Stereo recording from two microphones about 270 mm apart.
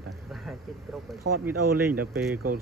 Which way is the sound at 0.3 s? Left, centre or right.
Centre.